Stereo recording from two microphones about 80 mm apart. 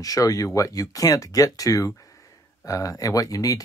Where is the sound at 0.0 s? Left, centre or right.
Left.